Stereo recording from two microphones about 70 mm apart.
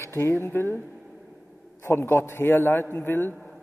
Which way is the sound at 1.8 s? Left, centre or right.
Left.